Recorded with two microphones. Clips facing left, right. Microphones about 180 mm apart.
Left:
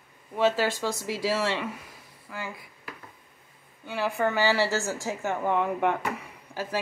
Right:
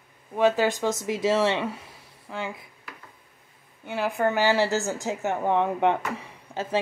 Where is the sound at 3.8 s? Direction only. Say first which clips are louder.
Right 2 dB; 15° right (ahead or behind).